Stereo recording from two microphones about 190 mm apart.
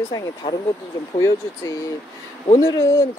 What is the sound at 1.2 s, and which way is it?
Speech, 15° left (ahead or behind).